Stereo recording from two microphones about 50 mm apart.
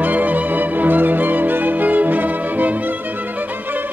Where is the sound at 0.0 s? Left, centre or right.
Right.